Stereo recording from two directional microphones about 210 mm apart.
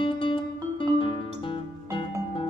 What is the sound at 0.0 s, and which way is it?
Music, 25° left (ahead or behind).